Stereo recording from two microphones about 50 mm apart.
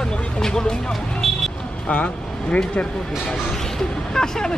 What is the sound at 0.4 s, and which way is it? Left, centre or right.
Speech, centre.